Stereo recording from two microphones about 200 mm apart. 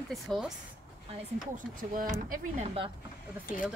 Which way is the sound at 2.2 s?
45° right (ahead or behind).